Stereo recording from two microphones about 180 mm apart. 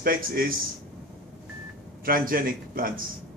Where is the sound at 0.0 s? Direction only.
55° right (ahead or behind).